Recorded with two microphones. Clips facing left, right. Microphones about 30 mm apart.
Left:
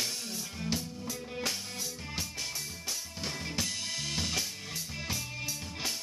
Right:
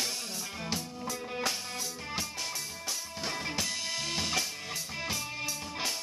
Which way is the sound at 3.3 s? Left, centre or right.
Right.